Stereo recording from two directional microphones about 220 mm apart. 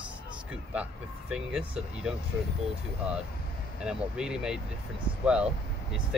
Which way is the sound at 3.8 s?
5° right (ahead or behind).